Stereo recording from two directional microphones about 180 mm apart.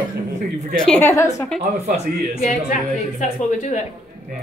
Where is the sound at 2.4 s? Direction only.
45° left (ahead or behind).